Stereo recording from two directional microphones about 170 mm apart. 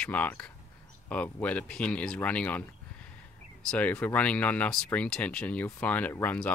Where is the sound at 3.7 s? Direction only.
10° left (ahead or behind).